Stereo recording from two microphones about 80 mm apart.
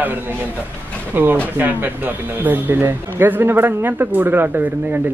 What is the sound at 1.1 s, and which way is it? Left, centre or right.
A man's voice, right.